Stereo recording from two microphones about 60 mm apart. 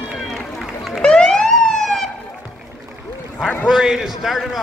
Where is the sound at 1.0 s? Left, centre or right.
Centre.